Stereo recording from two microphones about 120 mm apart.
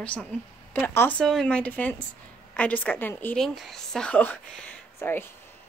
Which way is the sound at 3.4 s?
Centre (ahead or behind).